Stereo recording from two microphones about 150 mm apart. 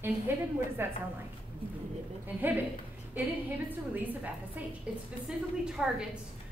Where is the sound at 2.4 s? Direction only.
15° right (ahead or behind).